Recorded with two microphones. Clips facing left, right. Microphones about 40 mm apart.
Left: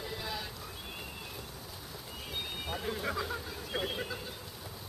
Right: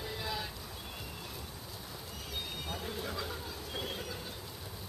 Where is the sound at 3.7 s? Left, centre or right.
Left.